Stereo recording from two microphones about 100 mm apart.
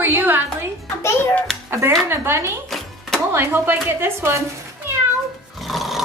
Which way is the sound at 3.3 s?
25° right (ahead or behind).